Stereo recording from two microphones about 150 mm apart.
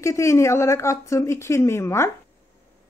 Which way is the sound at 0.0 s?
20° left (ahead or behind).